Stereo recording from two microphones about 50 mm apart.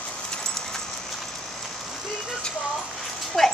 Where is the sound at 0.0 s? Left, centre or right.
Left.